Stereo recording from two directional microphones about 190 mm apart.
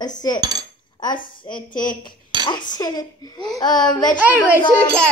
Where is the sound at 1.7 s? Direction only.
45° left (ahead or behind).